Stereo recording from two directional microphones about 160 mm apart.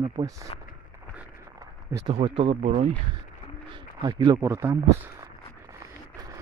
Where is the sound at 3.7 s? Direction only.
30° right (ahead or behind).